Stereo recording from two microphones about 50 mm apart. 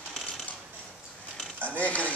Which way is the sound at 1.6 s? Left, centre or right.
Left.